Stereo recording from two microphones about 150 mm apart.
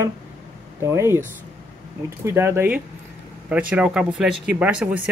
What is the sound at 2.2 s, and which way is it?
Speech, 15° right (ahead or behind).